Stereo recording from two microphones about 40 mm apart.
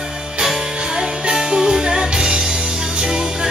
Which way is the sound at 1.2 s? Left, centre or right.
Centre.